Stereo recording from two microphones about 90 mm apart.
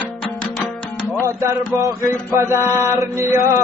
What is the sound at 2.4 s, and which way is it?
Mantra, 35° right (ahead or behind).